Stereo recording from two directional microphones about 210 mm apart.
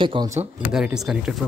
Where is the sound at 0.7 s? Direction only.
5° right (ahead or behind).